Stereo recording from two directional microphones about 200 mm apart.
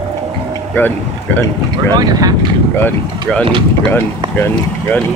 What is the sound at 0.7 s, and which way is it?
Speech, 10° left (ahead or behind).